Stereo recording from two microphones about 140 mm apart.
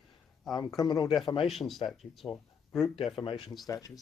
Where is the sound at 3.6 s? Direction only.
25° left (ahead or behind).